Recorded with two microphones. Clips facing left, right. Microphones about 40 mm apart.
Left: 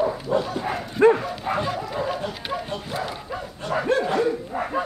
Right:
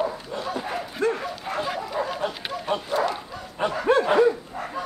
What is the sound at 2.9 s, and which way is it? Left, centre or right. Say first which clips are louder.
Bow-wow: right 7 dB; centre.